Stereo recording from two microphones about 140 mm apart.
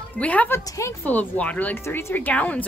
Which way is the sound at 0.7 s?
20° left (ahead or behind).